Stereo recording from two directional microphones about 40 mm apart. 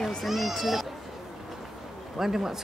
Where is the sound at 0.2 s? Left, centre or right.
Centre.